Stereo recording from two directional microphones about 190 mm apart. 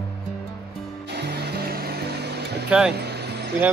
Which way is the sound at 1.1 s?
60° right (ahead or behind).